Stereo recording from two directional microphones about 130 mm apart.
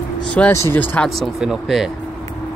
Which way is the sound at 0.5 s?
20° left (ahead or behind).